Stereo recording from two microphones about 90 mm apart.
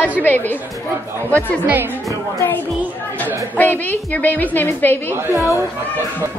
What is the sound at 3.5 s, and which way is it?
A woman's voice, 20° left (ahead or behind).